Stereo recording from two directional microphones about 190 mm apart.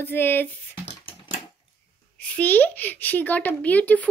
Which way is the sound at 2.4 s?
10° left (ahead or behind).